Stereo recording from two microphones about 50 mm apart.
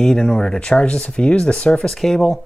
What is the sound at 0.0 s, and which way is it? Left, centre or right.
Speech, centre.